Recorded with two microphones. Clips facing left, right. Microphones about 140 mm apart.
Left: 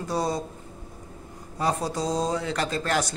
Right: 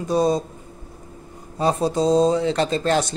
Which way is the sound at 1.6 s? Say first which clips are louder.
Right 7 dB; 25° right (ahead or behind).